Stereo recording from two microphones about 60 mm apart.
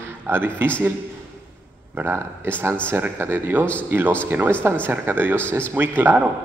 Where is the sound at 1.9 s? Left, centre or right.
Right.